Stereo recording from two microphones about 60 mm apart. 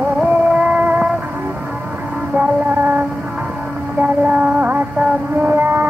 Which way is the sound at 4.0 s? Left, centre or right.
Right.